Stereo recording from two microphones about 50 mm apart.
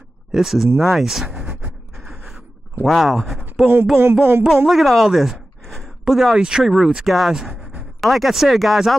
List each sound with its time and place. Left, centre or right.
0.3 s speech: centre
2.0 s gasp: centre
2.8 s speech: centre
3.9 s a sound: right
4.6 s speech: centre